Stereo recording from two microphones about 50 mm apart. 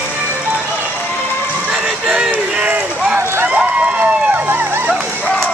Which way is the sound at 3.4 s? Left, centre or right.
Right.